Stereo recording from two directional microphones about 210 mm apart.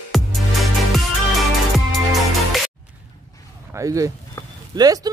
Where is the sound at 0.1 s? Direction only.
Centre (ahead or behind).